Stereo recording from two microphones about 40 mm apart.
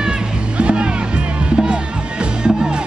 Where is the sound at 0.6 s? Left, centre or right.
Right.